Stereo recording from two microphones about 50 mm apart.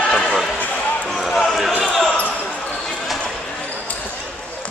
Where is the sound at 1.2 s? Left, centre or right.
Centre.